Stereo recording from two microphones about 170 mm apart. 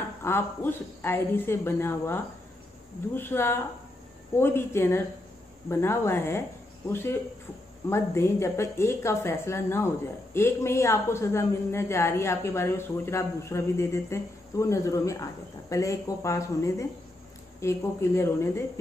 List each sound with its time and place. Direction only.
0.2 s a woman's voice: 15° left (ahead or behind)